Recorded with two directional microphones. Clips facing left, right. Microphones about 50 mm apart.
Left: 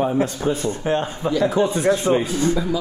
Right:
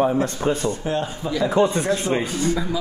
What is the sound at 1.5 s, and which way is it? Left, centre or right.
Speech, right.